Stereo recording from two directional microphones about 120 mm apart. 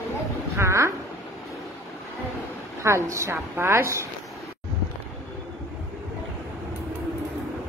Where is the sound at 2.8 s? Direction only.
25° right (ahead or behind).